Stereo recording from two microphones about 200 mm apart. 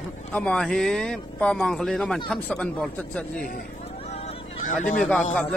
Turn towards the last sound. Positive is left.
turn(degrees=10)  # may be behind; listen again after turning